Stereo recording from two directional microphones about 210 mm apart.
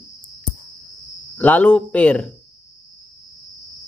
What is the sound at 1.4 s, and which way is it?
Speech, 5° left (ahead or behind).